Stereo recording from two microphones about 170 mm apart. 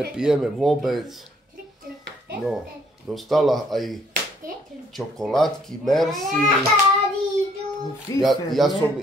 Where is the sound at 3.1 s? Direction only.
Centre (ahead or behind).